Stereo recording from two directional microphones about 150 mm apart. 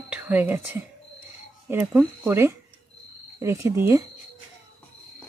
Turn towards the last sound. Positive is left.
turn(degrees=-15)  # may be behind; listen again after turning